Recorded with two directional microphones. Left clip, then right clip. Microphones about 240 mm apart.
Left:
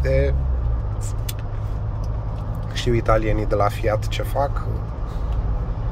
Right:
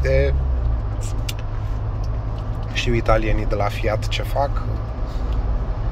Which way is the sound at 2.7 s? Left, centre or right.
Left.